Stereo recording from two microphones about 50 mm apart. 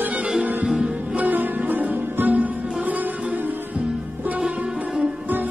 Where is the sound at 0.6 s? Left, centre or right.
Centre.